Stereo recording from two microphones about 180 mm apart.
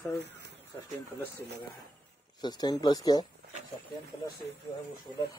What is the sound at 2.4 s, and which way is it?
Speech, 25° left (ahead or behind).